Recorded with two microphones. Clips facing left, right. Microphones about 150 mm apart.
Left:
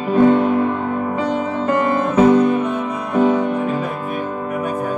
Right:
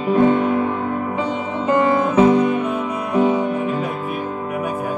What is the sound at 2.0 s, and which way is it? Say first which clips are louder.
Music: left 5 dB; centre (ahead or behind).